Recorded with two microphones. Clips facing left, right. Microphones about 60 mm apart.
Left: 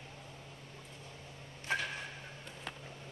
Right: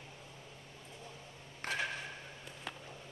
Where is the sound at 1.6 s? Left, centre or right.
Right.